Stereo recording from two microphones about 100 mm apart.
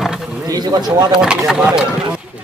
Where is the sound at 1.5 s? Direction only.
5° right (ahead or behind).